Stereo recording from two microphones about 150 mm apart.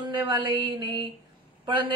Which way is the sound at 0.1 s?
30° right (ahead or behind).